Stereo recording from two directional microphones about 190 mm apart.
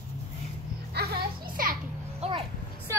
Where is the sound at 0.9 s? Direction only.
50° right (ahead or behind).